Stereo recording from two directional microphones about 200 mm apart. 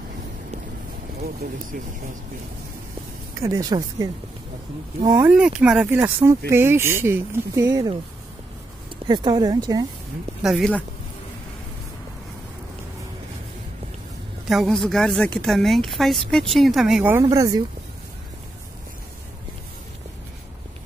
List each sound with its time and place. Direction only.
3.3 s speech: 15° right (ahead or behind)
5.3 s speech: 5° right (ahead or behind)
9.0 s speech: 20° right (ahead or behind)
10.4 s a woman's voice: centre (ahead or behind)
14.5 s a woman's voice: centre (ahead or behind); by 17.6 s 15° right (ahead or behind)